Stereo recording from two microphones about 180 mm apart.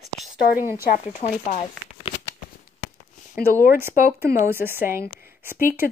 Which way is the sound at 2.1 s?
30° left (ahead or behind).